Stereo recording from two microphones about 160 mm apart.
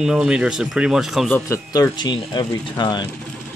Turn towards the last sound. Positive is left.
turn(degrees=25)  # may be behind; listen again after turning